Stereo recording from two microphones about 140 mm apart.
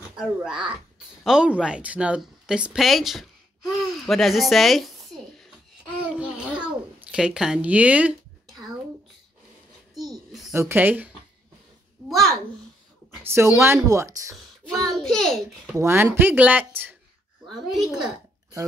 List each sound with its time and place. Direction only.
0.2 s speech: 5° right (ahead or behind)
6.0 s babbling: 10° right (ahead or behind)
9.9 s a sound: centre (ahead or behind)
10.5 s speech: 15° right (ahead or behind)
13.2 s speech: 15° right (ahead or behind)
14.3 s a child's voice: centre (ahead or behind)
15.8 s speech: 15° right (ahead or behind)
17.5 s a woman's voice: centre (ahead or behind)